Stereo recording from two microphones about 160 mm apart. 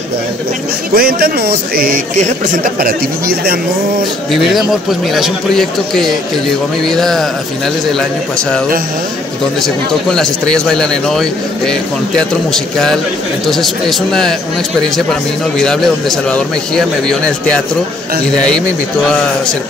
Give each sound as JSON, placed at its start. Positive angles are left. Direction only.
{"t": 0.9, "sound": "a man's voice", "side_deg": -70}
{"t": 4.3, "sound": "speech", "side_deg": 0}
{"t": 9.6, "sound": "speech", "side_deg": 5}
{"t": 15.5, "sound": "speech", "side_deg": 5}
{"t": 19.0, "sound": "speech", "side_deg": 5}